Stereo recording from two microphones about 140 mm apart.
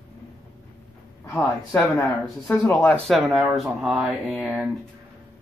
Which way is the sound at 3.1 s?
Centre (ahead or behind).